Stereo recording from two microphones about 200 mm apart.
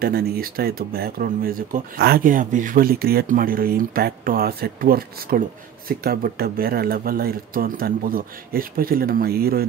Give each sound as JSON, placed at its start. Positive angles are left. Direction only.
{"t": 0.0, "sound": "speech", "side_deg": -50}